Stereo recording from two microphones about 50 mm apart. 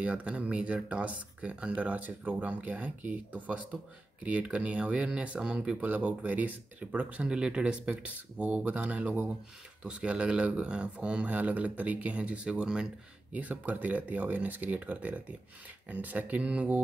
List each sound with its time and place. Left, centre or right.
0.0 s speech: right
5.8 s speech: right; by 12.8 s centre
13.3 s speech: right